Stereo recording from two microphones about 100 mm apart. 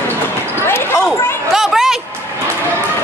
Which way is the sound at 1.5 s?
Centre (ahead or behind).